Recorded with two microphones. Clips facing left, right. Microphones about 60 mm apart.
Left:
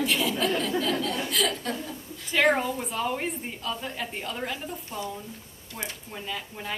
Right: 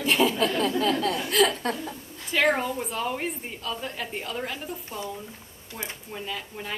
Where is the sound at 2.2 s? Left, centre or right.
Centre.